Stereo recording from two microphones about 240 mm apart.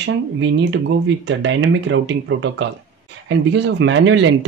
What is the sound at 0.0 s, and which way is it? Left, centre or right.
Speech, right.